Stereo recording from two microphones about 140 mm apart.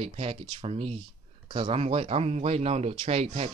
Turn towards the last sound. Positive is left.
turn(degrees=-45)  # may be behind; listen again after turning